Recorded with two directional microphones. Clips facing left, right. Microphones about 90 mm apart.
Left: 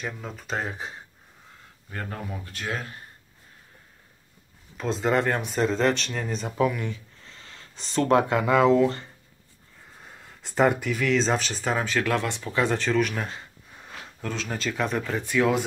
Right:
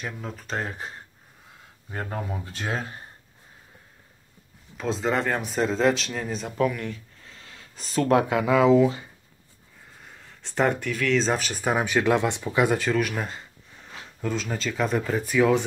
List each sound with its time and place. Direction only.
0.0 s speech: centre (ahead or behind)
1.9 s speech: 20° right (ahead or behind)
4.7 s speech: centre (ahead or behind)